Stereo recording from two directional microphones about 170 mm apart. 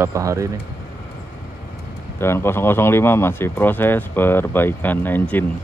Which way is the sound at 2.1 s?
15° left (ahead or behind).